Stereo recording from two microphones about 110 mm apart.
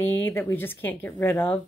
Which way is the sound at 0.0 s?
20° left (ahead or behind).